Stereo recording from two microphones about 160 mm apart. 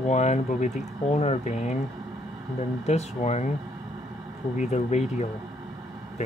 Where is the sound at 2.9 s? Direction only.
45° left (ahead or behind).